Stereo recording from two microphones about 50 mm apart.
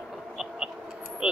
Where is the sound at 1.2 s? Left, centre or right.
Right.